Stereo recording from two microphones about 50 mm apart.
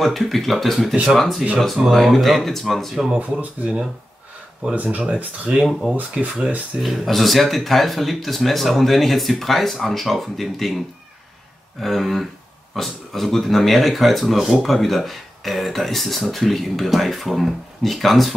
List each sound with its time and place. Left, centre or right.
0.0 s speech: centre
1.8 s speech: centre
2.1 s speech: centre
3.1 s speech: right
3.6 s speech: centre
5.6 s speech: centre
6.1 s speech: centre
6.8 s speech: centre
11.8 s speech: centre